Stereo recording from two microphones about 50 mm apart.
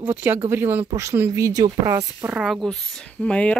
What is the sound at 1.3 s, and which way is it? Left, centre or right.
Speech, right.